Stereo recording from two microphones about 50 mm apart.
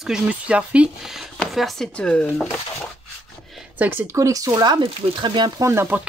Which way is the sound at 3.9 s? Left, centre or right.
Right.